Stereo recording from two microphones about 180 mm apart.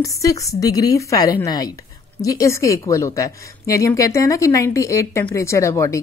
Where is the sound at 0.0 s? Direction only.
20° left (ahead or behind).